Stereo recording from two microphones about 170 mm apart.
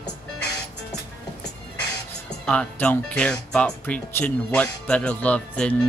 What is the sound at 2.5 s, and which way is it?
Speech, 5° left (ahead or behind).